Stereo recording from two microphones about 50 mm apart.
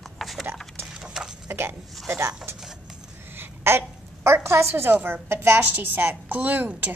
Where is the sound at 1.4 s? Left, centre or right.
Right.